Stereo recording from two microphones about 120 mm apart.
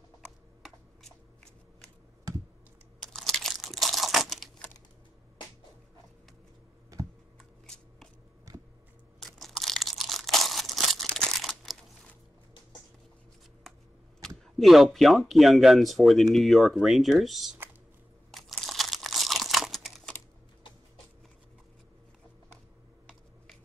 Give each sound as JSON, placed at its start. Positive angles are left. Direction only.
{"t": 0.6, "sound": "shuffling cards", "side_deg": 0}
{"t": 3.0, "sound": "crumpling", "side_deg": 5}
{"t": 6.9, "sound": "computer keyboard", "side_deg": -30}
{"t": 7.6, "sound": "shuffling cards", "side_deg": 5}
{"t": 8.5, "sound": "a sound", "side_deg": -25}
{"t": 9.4, "sound": "crumpling", "side_deg": 0}
{"t": 14.2, "sound": "speech", "side_deg": 0}
{"t": 18.3, "sound": "crumpling", "side_deg": 0}